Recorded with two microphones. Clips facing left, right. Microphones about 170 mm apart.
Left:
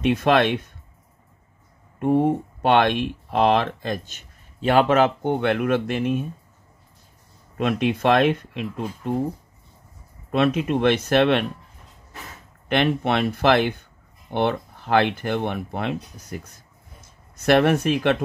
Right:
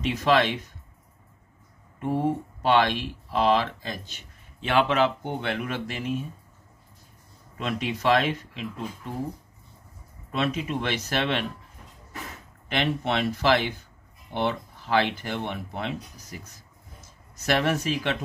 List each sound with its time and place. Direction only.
0.0 s speech: 60° left (ahead or behind)
2.0 s speech: 60° left (ahead or behind)
7.5 s speech: 55° left (ahead or behind)
10.3 s speech: 55° left (ahead or behind)
12.6 s speech: 60° left (ahead or behind)
17.5 s speech: 60° left (ahead or behind)